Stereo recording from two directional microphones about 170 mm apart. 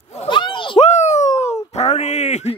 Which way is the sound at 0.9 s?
45° left (ahead or behind).